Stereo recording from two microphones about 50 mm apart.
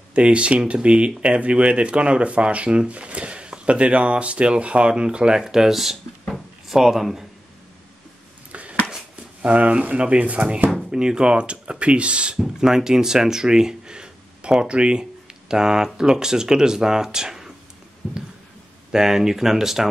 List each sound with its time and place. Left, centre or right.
0.1 s speech: right
5.4 s speech: centre
8.5 s a sound: right
9.4 s speech: right
10.9 s speech: centre
12.4 s speech: centre
18.9 s speech: centre